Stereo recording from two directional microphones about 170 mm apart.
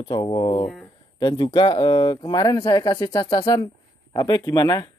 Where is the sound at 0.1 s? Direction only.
30° left (ahead or behind).